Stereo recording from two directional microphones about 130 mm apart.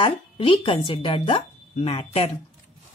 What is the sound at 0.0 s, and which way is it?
Speech, 40° left (ahead or behind).